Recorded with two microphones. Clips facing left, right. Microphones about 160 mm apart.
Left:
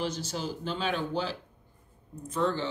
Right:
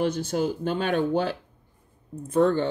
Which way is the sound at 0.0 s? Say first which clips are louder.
Right 8 dB; 55° right (ahead or behind).